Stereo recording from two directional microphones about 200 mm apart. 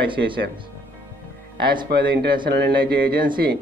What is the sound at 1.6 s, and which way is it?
Speech, 55° right (ahead or behind).